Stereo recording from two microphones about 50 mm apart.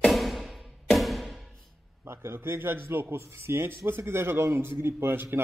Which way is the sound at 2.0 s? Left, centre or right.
Right.